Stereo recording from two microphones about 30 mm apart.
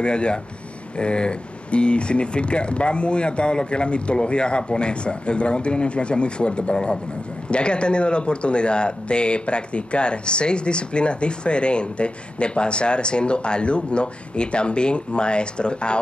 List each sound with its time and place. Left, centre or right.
0.0 s speech: left